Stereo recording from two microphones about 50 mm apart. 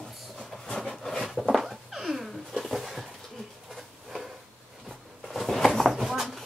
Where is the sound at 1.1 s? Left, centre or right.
Centre.